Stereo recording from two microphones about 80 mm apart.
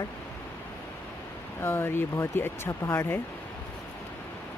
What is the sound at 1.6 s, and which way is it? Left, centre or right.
Speech, left.